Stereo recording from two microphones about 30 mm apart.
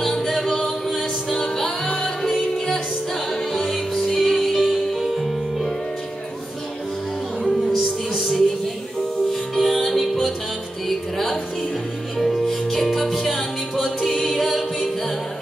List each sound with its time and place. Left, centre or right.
0.0 s music: centre
0.8 s a capella: centre
2.2 s music: centre
3.5 s music: centre
4.6 s music: centre
7.4 s music: centre